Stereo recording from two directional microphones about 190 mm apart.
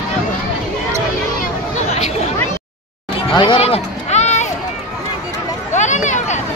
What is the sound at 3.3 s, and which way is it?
Run, 25° left (ahead or behind).